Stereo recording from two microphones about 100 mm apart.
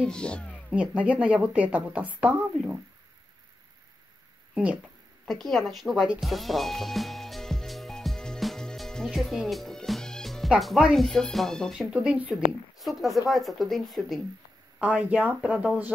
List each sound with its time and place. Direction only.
0.0 s speech: 10° left (ahead or behind)
0.7 s speech: 15° right (ahead or behind)
5.2 s speech: centre (ahead or behind)
6.2 s music: centre (ahead or behind)
10.6 s speech: centre (ahead or behind)
11.9 s speech: 10° right (ahead or behind)
14.8 s speech: 15° right (ahead or behind)